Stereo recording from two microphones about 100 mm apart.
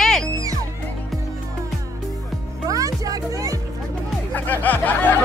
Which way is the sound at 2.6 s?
35° right (ahead or behind).